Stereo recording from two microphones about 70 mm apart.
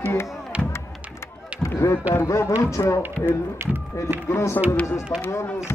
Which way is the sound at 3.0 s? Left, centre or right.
Right.